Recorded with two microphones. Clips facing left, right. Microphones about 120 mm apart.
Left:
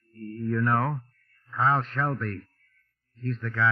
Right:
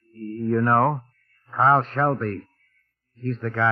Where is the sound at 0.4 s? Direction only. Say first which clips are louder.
Right 6 dB; 45° right (ahead or behind).